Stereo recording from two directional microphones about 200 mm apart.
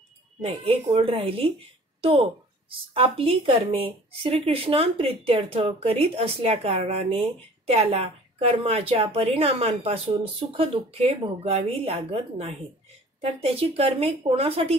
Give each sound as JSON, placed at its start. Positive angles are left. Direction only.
{"t": 0.4, "sound": "speech", "side_deg": -30}
{"t": 2.0, "sound": "a sound", "side_deg": -30}
{"t": 2.9, "sound": "speech", "side_deg": -30}